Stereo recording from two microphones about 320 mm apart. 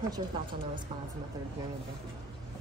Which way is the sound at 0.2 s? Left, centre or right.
Centre.